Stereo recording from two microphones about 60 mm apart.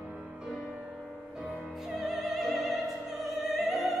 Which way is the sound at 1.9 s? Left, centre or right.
Centre.